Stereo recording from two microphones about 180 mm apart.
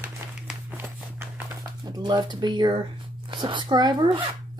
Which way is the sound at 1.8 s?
25° right (ahead or behind).